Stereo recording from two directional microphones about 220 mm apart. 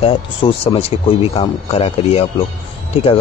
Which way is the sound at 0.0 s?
25° left (ahead or behind).